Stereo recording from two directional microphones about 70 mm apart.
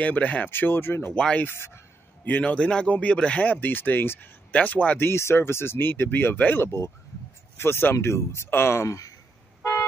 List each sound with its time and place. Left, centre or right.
0.0 s speech: left
0.5 s speech: left
1.1 s speech: centre
1.4 s a man's voice: left
2.5 s speech: centre; by 9.1 s left
9.6 s vehicle: left